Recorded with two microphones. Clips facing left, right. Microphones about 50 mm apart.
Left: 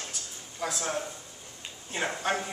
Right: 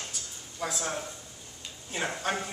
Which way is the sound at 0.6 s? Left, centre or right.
Centre.